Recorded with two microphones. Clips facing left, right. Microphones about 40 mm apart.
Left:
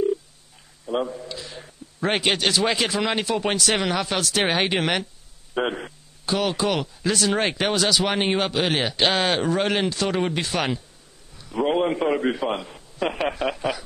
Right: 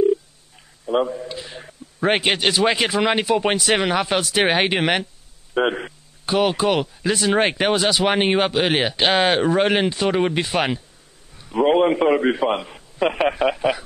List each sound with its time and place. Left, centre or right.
0.8 s a man's voice: centre